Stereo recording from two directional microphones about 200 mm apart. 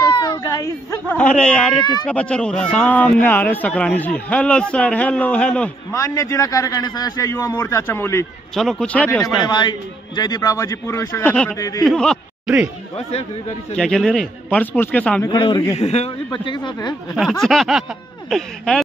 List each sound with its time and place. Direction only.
0.2 s baby cry: 20° left (ahead or behind); by 1.8 s 5° left (ahead or behind)
2.0 s a man's voice: 5° left (ahead or behind)
9.2 s speech: 20° left (ahead or behind)
11.8 s speech: centre (ahead or behind)
13.7 s a man's voice: centre (ahead or behind)
15.2 s speech: 20° left (ahead or behind)
15.8 s speech: 30° left (ahead or behind)
17.1 s a man's voice: centre (ahead or behind)